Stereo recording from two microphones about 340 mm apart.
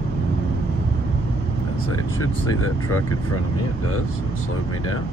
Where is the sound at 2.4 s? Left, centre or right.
Left.